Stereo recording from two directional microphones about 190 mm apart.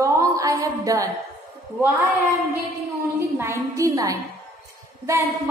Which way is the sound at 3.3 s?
15° right (ahead or behind).